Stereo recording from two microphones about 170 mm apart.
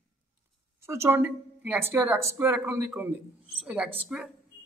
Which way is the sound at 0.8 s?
15° right (ahead or behind).